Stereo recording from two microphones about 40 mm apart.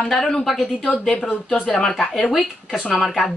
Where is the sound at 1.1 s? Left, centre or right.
Left.